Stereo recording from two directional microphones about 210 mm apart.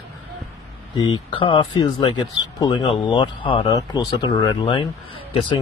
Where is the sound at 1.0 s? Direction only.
20° left (ahead or behind).